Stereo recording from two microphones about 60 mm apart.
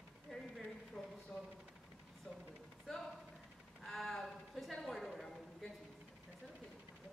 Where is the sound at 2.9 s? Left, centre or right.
Centre.